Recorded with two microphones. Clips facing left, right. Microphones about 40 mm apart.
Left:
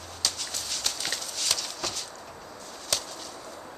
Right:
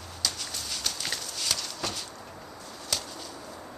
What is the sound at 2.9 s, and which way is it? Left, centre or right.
Chop, centre.